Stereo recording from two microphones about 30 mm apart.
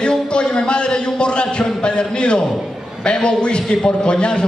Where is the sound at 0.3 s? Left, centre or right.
Left.